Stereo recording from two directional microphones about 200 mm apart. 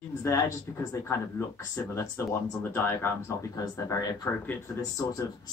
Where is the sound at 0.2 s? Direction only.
15° left (ahead or behind).